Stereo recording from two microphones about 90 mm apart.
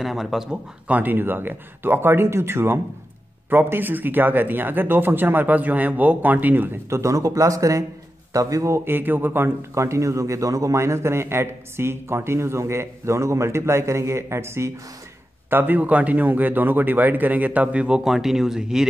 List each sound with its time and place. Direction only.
0.0 s speech: 5° right (ahead or behind)
0.8 s speech: 20° right (ahead or behind)
6.9 s a man's voice: 35° right (ahead or behind); by 18.9 s 5° right (ahead or behind)